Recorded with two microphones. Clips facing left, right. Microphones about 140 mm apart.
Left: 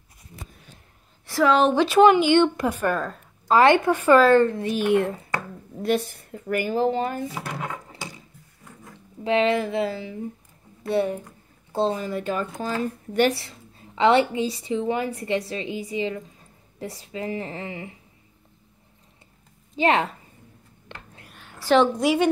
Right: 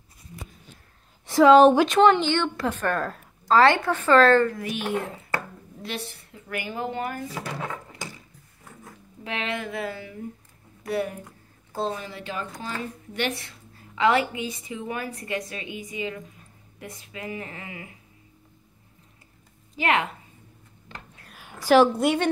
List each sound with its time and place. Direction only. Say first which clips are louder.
1.2 s a sound: right 4 dB; 20° right (ahead or behind)
1.9 s a woman's voice: left 3 dB; 10° left (ahead or behind); by 4.7 s 25° left (ahead or behind)
5.8 s speech: left 11 dB; 45° left (ahead or behind); by 8.1 s 25° left (ahead or behind)
9.2 s a woman's voice: left 10 dB; 30° left (ahead or behind)
12.0 s speech: left 7 dB; 45° left (ahead or behind); by 17.9 s 30° left (ahead or behind)
19.7 s a woman's voice: left 3 dB; 30° left (ahead or behind)
20.9 s a sound: even; 65° left (ahead or behind)
21.5 s a woman's voice: right 1 dB; 10° right (ahead or behind)